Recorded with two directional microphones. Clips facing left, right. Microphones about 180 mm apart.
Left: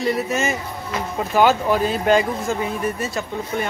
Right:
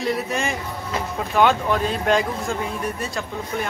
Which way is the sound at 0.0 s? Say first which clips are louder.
Left 3 dB; centre (ahead or behind).